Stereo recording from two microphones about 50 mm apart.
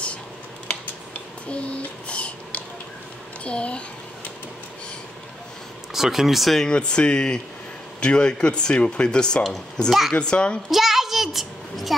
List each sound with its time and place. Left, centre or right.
1.5 s a sound: left
3.4 s a child's voice: left
5.9 s speech: centre
6.6 s speech: centre
9.8 s speech: centre
10.1 s a child's voice: left
10.7 s a sound: centre